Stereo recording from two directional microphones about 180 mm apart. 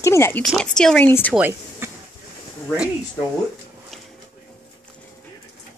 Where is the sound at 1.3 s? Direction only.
10° right (ahead or behind).